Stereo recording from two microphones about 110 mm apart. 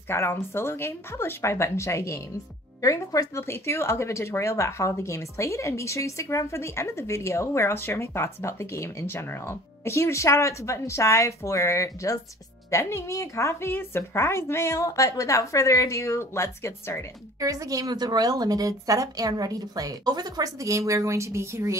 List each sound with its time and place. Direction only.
0.1 s speech: 25° left (ahead or behind)
17.4 s a woman's voice: 30° right (ahead or behind)